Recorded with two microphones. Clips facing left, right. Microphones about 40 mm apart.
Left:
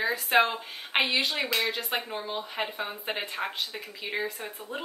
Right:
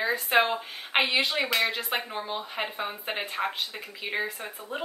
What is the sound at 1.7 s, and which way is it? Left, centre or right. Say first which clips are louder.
Speech: even; centre.